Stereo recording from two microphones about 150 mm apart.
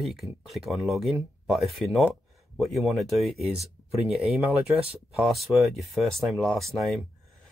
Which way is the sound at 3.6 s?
45° right (ahead or behind).